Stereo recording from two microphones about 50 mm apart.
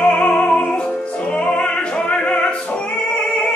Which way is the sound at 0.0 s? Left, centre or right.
Left.